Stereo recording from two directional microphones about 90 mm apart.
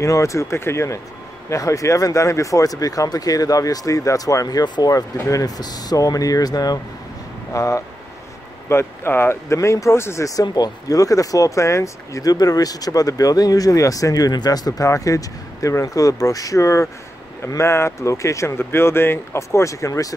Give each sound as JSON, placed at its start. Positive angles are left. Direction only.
{"t": 0.0, "sound": "speech", "side_deg": 35}
{"t": 10.4, "sound": "speech", "side_deg": 45}